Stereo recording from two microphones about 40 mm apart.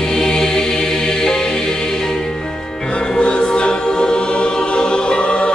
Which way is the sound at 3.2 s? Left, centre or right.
Left.